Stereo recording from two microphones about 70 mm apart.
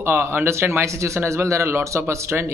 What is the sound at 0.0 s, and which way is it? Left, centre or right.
Speech, right.